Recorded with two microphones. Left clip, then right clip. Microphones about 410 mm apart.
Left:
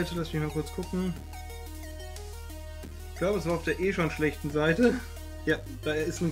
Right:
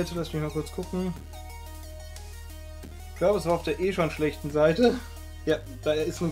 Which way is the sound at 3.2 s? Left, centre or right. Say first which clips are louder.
Right 4 dB; centre.